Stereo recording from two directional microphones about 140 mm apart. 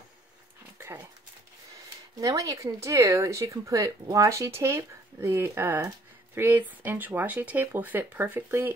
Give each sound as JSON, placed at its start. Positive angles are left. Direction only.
{"t": 0.7, "sound": "dog", "side_deg": -15}
{"t": 2.1, "sound": "speech", "side_deg": -25}